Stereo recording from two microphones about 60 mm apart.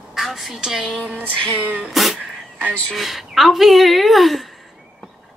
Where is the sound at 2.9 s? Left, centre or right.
Centre.